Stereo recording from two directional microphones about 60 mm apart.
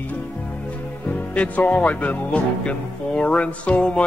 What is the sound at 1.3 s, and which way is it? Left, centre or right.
Music, left.